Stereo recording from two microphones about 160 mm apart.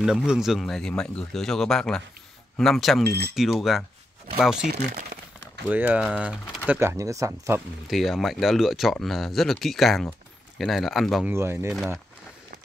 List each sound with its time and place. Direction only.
0.0 s speech: 5° right (ahead or behind)
5.7 s speech: 10° right (ahead or behind)
7.9 s speech: centre (ahead or behind)
11.2 s speech: 15° right (ahead or behind)
11.7 s speech: centre (ahead or behind)